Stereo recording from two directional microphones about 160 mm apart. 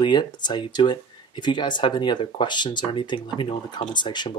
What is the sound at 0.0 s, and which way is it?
Speech, 30° left (ahead or behind).